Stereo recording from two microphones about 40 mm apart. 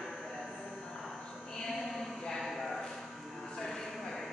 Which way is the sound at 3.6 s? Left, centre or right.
Centre.